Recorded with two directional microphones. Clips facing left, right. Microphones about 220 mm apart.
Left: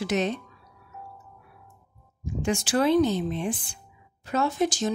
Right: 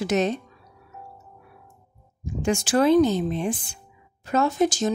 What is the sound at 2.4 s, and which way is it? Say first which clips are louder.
A woman's voice: right 3 dB; 40° right (ahead or behind).